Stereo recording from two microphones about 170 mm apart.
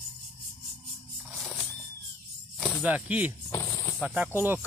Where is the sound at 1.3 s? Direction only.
Centre (ahead or behind).